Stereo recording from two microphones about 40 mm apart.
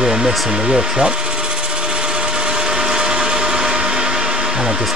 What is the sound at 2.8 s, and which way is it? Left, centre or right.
Blender, centre.